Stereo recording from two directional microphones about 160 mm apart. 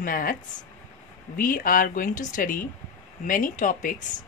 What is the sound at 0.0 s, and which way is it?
Speech, 60° left (ahead or behind).